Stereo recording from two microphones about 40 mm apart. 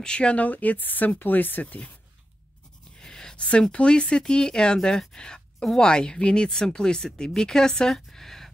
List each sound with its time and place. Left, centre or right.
0.0 s speech: left
0.5 s speech: left
3.0 s a sound: centre
3.3 s speech: left; by 8.5 s centre